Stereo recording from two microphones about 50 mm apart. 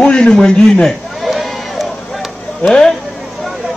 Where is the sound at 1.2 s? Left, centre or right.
Centre.